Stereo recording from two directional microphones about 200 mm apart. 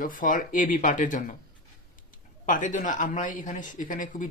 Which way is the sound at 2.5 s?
40° left (ahead or behind).